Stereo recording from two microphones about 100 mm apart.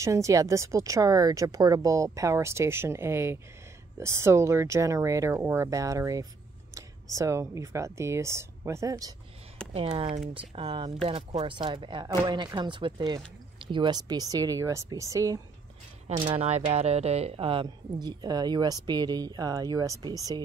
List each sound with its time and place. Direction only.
0.0 s a woman's voice: 30° right (ahead or behind)
9.7 s a woman's voice: 70° right (ahead or behind); by 15.4 s 35° right (ahead or behind)
16.3 s speech: 90° right; by 17.6 s 70° right (ahead or behind)
18.0 s a woman's voice: 45° right (ahead or behind)